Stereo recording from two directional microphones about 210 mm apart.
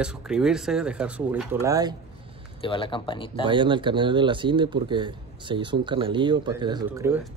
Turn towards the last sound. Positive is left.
turn(degrees=-20)  # may be behind; listen again after turning